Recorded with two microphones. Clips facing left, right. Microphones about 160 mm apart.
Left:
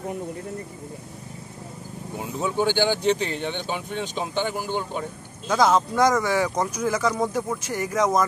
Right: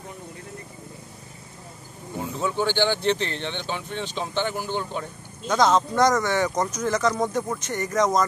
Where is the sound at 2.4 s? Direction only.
10° left (ahead or behind).